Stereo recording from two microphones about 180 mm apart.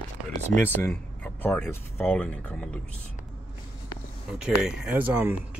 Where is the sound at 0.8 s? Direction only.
10° left (ahead or behind).